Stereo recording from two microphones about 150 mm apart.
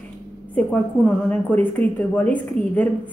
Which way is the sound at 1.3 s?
10° left (ahead or behind).